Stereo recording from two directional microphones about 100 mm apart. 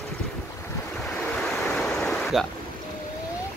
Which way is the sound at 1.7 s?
5° left (ahead or behind).